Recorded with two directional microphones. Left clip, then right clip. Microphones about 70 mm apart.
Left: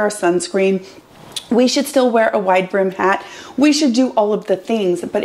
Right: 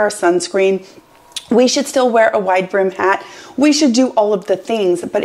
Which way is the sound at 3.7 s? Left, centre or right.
Right.